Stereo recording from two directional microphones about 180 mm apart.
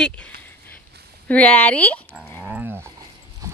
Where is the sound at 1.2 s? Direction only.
10° left (ahead or behind).